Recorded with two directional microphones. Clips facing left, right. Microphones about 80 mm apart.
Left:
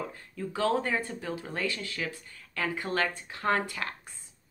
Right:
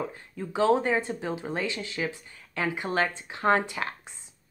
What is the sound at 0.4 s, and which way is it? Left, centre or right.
A woman's voice, centre.